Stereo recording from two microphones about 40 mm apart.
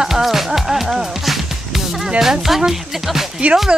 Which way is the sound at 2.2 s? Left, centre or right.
Centre.